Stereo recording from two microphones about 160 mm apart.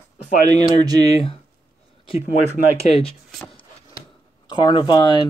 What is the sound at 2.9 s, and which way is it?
Speech, 40° left (ahead or behind).